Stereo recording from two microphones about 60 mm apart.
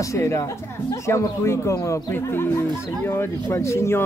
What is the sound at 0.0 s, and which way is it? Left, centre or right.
Speech, left.